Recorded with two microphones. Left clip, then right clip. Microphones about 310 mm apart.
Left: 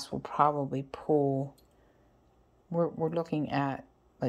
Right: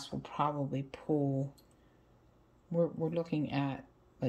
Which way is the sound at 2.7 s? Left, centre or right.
Centre.